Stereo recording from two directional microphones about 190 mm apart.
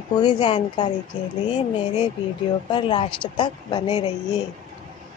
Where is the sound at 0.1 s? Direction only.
20° left (ahead or behind).